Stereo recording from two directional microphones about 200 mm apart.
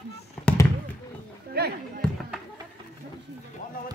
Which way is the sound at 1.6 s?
50° right (ahead or behind).